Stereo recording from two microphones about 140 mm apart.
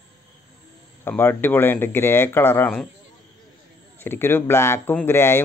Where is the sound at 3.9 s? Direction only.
15° left (ahead or behind).